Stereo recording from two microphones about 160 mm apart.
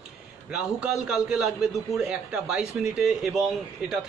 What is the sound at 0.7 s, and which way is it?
Speech, 5° right (ahead or behind).